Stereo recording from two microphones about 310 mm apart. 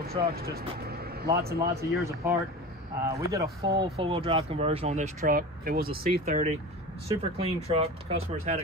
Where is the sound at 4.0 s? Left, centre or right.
Centre.